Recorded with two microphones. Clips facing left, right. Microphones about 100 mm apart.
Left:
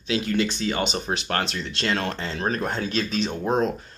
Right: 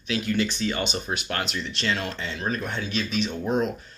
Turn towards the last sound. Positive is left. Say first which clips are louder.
# left 2 dB
turn(degrees=35)  # may be behind; listen again after turning